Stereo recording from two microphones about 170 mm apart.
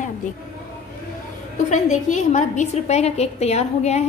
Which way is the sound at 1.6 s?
45° left (ahead or behind).